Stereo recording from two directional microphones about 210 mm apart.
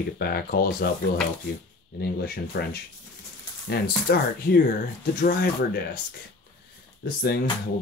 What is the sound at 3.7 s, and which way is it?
Speech, 50° left (ahead or behind).